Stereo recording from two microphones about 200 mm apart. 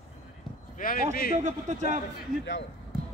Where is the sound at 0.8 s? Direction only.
45° left (ahead or behind).